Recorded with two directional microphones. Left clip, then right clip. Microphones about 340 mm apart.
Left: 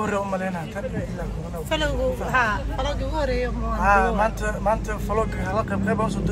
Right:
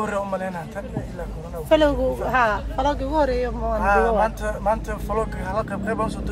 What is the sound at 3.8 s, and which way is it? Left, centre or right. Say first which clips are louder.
Speech: even; centre.